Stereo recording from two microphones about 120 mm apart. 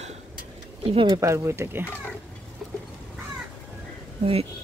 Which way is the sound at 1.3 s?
25° right (ahead or behind).